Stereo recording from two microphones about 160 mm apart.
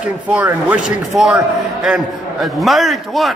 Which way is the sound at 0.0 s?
10° right (ahead or behind).